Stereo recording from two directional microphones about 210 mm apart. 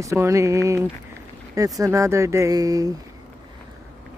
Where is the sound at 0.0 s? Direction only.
15° right (ahead or behind).